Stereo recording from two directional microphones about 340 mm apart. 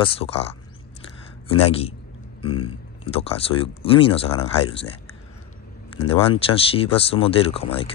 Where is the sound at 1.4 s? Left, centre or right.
Centre.